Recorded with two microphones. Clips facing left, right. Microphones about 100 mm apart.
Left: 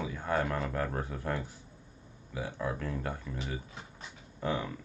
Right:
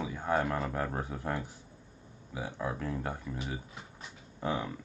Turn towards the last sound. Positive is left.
turn(degrees=-15)  # may be behind; listen again after turning